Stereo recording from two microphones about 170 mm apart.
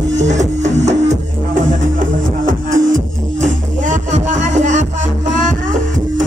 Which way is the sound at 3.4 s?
45° right (ahead or behind).